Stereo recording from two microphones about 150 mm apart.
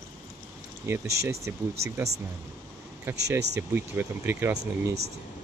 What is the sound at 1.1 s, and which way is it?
Speech, 20° right (ahead or behind).